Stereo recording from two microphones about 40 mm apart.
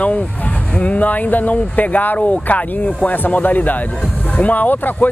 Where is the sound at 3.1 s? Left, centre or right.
Left.